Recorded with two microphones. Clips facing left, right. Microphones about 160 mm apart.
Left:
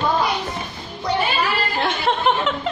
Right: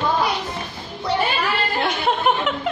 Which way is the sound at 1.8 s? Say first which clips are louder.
Left 1 dB; centre (ahead or behind).